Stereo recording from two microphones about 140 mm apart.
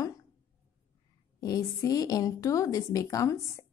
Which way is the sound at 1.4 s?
25° left (ahead or behind).